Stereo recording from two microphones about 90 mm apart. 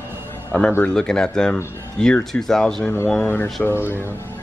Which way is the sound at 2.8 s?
30° left (ahead or behind).